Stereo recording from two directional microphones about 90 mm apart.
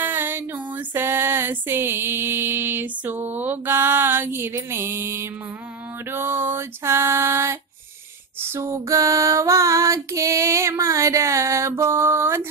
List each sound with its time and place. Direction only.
0.0 s female singing: 25° right (ahead or behind)
6.1 s a sound: 25° right (ahead or behind)
8.4 s female singing: 30° right (ahead or behind)